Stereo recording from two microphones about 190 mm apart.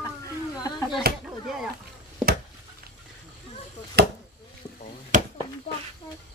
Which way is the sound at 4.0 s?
60° right (ahead or behind).